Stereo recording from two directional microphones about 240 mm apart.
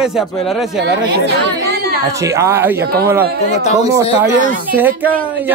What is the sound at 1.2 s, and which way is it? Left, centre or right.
Speech, right.